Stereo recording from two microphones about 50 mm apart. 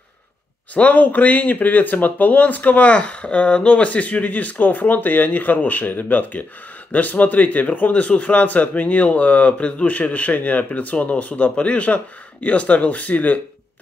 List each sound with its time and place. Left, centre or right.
0.7 s a man's voice: left